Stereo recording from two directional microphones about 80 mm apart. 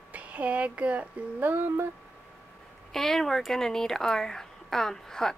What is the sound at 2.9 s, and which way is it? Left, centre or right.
Speech, centre.